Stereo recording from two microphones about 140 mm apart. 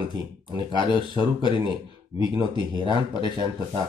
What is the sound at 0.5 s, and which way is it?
Speech, 35° right (ahead or behind).